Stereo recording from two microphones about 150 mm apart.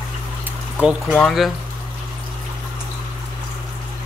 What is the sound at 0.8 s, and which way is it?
Speech, 5° right (ahead or behind).